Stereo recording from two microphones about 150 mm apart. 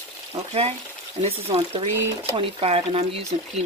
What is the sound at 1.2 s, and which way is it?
Speech, 40° right (ahead or behind).